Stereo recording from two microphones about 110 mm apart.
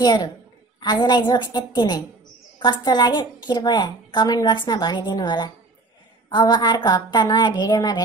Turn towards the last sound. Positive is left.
turn(degrees=40)  # may be behind; listen again after turning